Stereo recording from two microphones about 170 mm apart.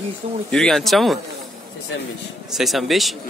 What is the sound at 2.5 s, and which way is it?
Speech, centre (ahead or behind).